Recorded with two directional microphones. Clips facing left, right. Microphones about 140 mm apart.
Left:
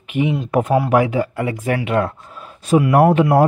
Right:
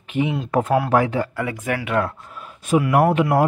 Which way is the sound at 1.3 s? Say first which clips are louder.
Left 4 dB; 25° left (ahead or behind).